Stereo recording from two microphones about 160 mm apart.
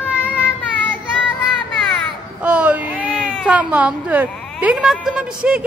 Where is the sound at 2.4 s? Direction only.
10° right (ahead or behind).